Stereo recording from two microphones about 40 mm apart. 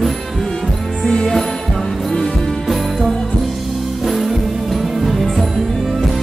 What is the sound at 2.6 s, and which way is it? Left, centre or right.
Music, centre.